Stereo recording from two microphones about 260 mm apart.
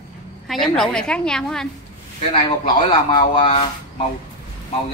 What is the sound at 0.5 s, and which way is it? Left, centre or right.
A woman's voice, centre.